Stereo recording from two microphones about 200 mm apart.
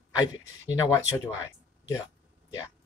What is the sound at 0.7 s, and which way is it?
Speech, 15° left (ahead or behind).